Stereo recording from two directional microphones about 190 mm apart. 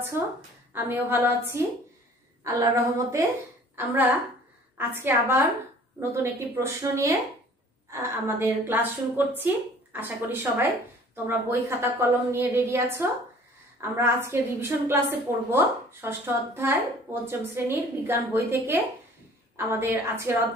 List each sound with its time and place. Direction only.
0.2 s a woman's voice: 15° right (ahead or behind)